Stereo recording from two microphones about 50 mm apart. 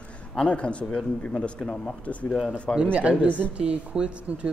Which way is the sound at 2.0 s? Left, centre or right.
Left.